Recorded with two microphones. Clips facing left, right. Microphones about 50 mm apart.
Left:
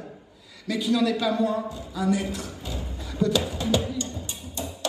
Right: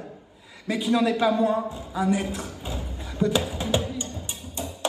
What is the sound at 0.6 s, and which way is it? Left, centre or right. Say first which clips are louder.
A man's voice: right 1 dB; right.